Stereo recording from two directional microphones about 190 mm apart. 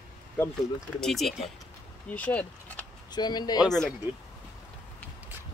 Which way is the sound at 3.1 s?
20° left (ahead or behind).